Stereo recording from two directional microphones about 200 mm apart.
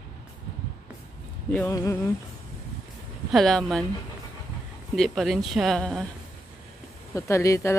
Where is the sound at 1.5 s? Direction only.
10° left (ahead or behind).